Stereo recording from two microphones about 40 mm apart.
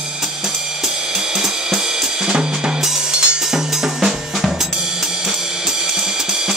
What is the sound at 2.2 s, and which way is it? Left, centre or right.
Drum kit, centre.